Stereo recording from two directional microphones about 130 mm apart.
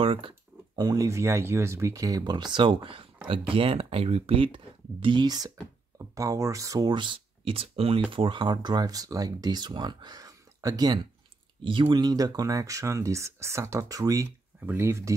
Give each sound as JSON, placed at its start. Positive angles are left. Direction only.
{"t": 0.0, "sound": "speech", "side_deg": -40}
{"t": 0.7, "sound": "speech", "side_deg": -30}
{"t": 11.6, "sound": "speech", "side_deg": -40}